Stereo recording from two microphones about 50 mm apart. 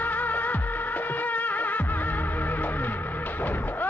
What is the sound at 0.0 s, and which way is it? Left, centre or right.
Music, left.